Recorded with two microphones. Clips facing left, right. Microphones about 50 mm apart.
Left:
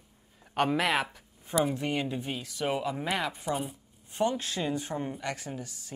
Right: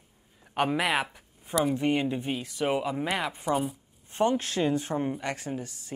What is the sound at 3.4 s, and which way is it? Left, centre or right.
Speech, centre.